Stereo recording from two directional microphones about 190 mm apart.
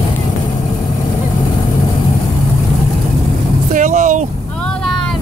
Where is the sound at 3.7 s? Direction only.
40° right (ahead or behind).